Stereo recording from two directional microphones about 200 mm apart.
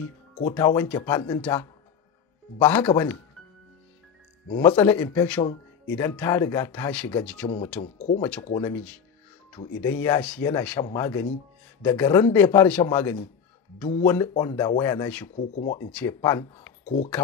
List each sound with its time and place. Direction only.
0.5 s speech: 15° left (ahead or behind)
4.6 s speech: 10° left (ahead or behind)
7.8 s speech: 20° left (ahead or behind)
15.3 s speech: 35° left (ahead or behind)
15.9 s speech: 10° left (ahead or behind)
16.8 s speech: 35° left (ahead or behind)